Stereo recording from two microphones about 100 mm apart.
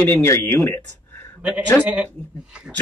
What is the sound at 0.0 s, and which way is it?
Speech, 20° left (ahead or behind).